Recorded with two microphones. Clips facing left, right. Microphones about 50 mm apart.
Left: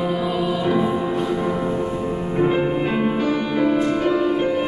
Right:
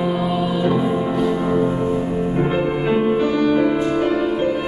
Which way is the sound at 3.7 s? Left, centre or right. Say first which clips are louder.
Right 1 dB; right.